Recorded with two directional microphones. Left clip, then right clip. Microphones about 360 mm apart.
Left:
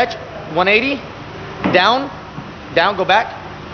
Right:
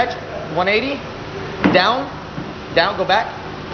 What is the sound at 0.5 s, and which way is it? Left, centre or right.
Speech, centre.